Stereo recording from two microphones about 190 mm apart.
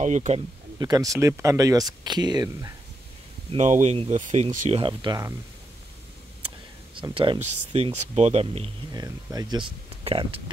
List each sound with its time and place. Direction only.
0.0 s speech: 40° right (ahead or behind)
0.7 s speech: 20° right (ahead or behind)
3.5 s speech: 40° right (ahead or behind); by 5.3 s 20° right (ahead or behind)
7.0 s speech: 25° right (ahead or behind)
8.9 s speech: 20° right (ahead or behind)